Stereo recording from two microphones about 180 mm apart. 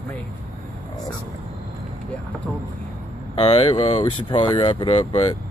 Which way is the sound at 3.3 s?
35° left (ahead or behind).